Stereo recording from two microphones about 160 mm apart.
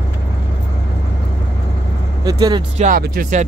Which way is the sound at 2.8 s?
60° right (ahead or behind).